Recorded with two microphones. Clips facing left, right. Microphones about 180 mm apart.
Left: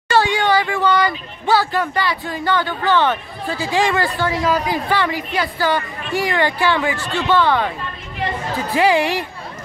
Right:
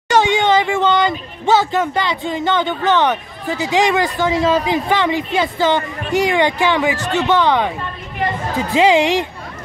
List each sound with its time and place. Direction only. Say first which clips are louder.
0.1 s speech: right 2 dB; 20° right (ahead or behind)